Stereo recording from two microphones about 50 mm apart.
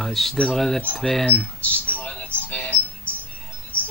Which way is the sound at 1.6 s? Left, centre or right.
Left.